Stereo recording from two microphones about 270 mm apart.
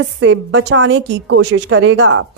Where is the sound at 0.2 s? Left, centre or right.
Right.